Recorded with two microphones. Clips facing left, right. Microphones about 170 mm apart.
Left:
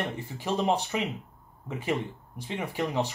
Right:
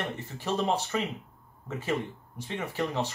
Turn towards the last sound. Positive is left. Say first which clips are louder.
# left 1 dB
turn(degrees=15)  # may be behind; listen again after turning